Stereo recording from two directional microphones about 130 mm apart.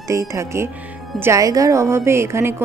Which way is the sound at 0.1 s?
20° right (ahead or behind).